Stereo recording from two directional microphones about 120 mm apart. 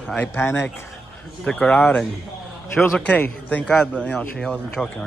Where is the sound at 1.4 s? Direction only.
10° left (ahead or behind).